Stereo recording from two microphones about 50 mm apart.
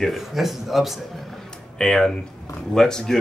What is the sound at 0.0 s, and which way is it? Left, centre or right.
Speech, centre.